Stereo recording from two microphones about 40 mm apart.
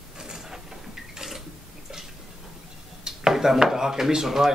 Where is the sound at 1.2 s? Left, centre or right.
Centre.